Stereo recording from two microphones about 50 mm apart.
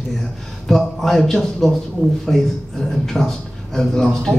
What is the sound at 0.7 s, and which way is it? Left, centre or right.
A man's voice, centre.